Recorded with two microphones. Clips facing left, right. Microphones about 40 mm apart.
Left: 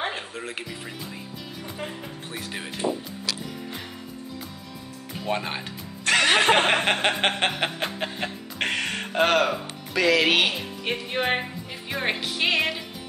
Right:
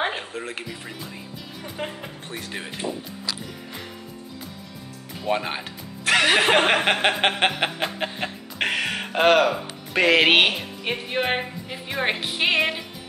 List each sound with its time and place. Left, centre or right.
0.1 s speech: centre
1.8 s speech: right
2.2 s speech: centre
5.2 s speech: centre
7.5 s music: centre
9.9 s speech: right
10.6 s music: centre